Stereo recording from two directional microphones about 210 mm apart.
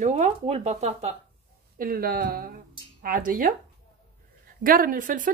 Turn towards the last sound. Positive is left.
turn(degrees=-40)  # may be behind; listen again after turning